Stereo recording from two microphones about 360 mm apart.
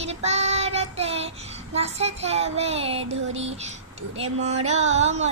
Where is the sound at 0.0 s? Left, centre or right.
Centre.